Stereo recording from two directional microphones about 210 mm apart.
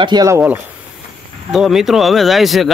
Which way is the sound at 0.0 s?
20° right (ahead or behind).